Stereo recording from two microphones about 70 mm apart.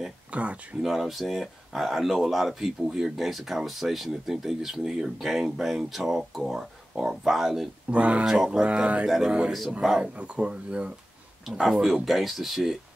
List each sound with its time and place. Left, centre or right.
0.3 s speech: centre
0.8 s speech: centre
7.9 s speech: centre
8.3 s speech: centre
9.5 s speech: centre